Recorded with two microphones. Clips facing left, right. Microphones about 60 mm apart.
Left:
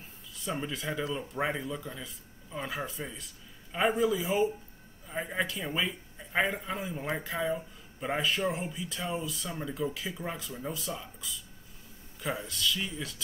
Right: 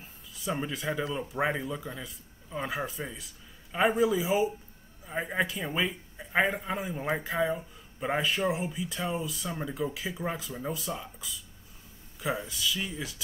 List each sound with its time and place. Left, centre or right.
0.4 s a man's voice: centre
7.2 s speech: centre